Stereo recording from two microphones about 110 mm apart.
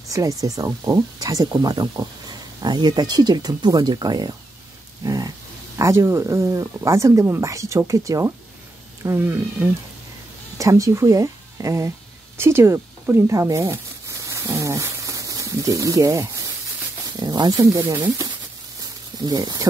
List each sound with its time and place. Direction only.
0.1 s speech: 30° right (ahead or behind)
19.2 s speech: 35° right (ahead or behind)